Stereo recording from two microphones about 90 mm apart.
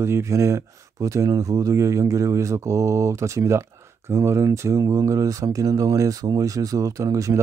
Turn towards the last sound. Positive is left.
turn(degrees=-40)  # may be behind; listen again after turning